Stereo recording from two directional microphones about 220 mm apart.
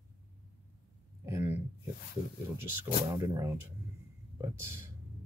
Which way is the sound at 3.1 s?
15° right (ahead or behind).